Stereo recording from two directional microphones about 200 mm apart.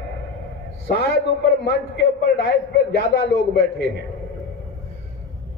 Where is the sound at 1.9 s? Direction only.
55° left (ahead or behind).